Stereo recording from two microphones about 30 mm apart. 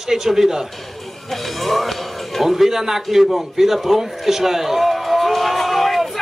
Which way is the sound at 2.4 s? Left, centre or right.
Centre.